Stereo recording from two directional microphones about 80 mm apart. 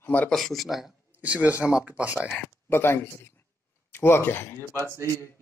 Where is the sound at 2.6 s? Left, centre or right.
Left.